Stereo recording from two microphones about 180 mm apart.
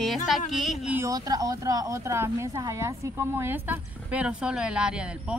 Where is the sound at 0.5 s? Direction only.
Centre (ahead or behind).